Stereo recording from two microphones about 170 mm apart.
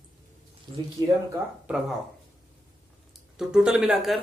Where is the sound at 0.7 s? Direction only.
25° right (ahead or behind).